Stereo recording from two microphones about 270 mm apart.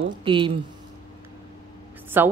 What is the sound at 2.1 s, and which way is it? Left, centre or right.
Speech, centre.